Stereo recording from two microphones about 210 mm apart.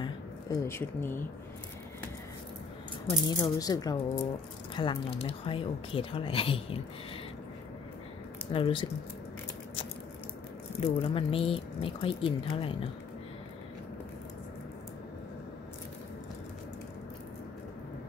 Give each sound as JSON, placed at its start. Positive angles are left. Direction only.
{"t": 0.0, "sound": "a sound", "side_deg": 15}
{"t": 3.1, "sound": "speech", "side_deg": 20}
{"t": 8.5, "sound": "speech", "side_deg": 25}
{"t": 10.8, "sound": "speech", "side_deg": 30}